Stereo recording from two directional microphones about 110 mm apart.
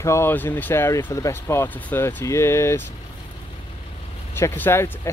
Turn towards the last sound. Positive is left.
turn(degrees=20)  # may be behind; listen again after turning